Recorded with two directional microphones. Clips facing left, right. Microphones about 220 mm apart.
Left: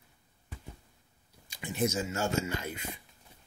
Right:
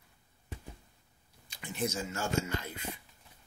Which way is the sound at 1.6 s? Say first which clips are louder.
Left 4 dB; 20° left (ahead or behind).